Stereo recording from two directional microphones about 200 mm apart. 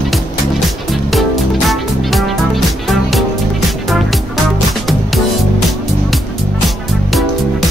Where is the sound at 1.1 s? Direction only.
Centre (ahead or behind).